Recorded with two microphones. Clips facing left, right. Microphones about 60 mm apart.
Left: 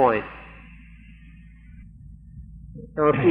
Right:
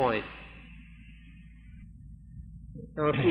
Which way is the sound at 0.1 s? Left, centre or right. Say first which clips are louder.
Left 7 dB; left.